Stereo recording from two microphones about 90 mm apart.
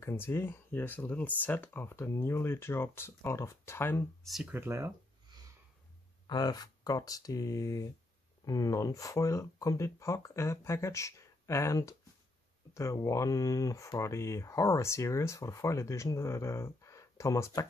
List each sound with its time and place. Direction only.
0.0 s speech: 25° left (ahead or behind)
4.2 s speech: centre (ahead or behind)
4.5 s speech: 25° right (ahead or behind)
6.2 s speech: 50° left (ahead or behind)